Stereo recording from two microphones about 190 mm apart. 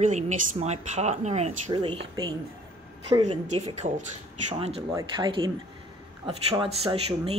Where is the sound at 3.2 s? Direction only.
35° right (ahead or behind).